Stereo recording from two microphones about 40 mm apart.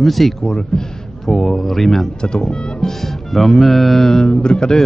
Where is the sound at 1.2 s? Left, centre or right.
Centre.